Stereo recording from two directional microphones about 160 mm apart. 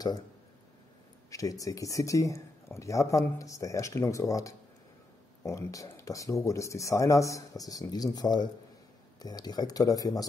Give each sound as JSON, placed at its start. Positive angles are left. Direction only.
{"t": 1.3, "sound": "speech", "side_deg": 20}